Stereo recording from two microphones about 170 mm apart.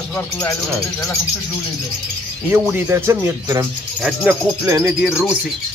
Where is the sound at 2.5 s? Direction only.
10° right (ahead or behind).